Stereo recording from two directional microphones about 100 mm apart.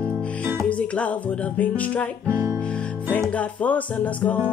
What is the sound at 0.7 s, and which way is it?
Music, 15° left (ahead or behind).